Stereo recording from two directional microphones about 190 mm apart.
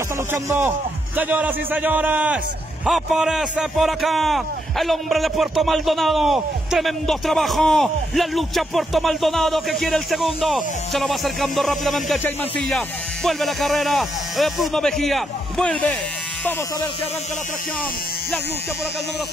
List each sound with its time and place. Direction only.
0.3 s a man's voice: 10° right (ahead or behind); by 16.0 s 5° left (ahead or behind)